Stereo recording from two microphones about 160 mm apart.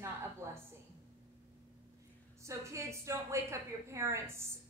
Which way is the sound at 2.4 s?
20° right (ahead or behind).